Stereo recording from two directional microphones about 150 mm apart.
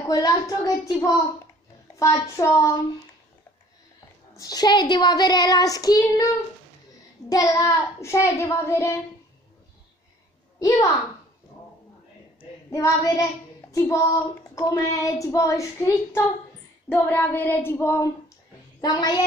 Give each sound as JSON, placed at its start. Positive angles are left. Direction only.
{"t": 0.1, "sound": "speech", "side_deg": 25}
{"t": 4.4, "sound": "speech", "side_deg": 25}
{"t": 7.2, "sound": "speech", "side_deg": 20}
{"t": 12.7, "sound": "speech", "side_deg": 20}
{"t": 16.9, "sound": "child singing", "side_deg": 15}
{"t": 18.8, "sound": "speech", "side_deg": 25}